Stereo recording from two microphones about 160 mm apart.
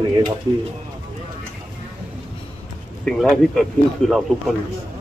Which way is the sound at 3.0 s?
Centre (ahead or behind).